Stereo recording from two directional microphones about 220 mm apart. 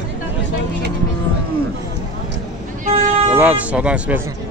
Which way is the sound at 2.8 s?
35° right (ahead or behind).